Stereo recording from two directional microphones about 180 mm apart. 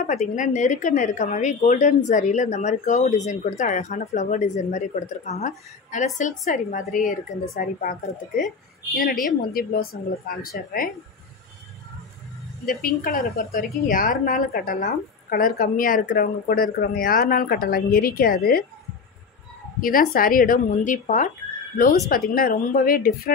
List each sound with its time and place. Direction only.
0.0 s a woman's voice: 40° left (ahead or behind)
9.2 s a woman's voice: 55° left (ahead or behind)
12.6 s a woman's voice: 50° left (ahead or behind)
19.8 s a woman's voice: 55° left (ahead or behind)
22.3 s a woman's voice: 50° left (ahead or behind)